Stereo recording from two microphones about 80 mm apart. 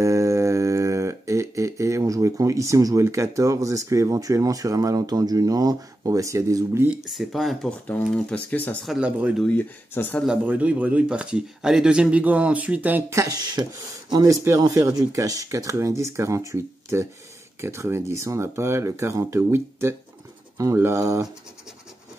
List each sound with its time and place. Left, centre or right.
0.0 s a sound: right
7.1 s speech: centre
8.3 s speech: centre
10.2 s speech: centre
13.1 s speech: right
14.2 s speech: right
14.6 s speech: right